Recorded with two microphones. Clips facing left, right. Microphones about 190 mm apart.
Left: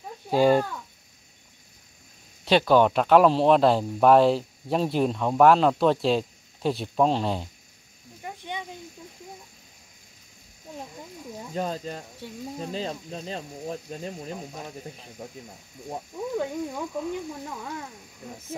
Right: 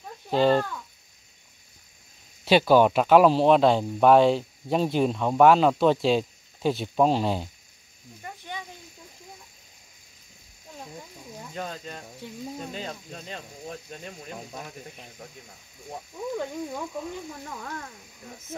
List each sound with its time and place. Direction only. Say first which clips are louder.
0.3 s a child's voice: left 1 dB; 10° left (ahead or behind)
2.4 s speech: right 1 dB; 5° right (ahead or behind)
8.2 s snake: left 3 dB; 20° left (ahead or behind)
11.5 s speech: left 6 dB; 35° left (ahead or behind)
16.3 s a child's voice: left 4 dB; centre (ahead or behind)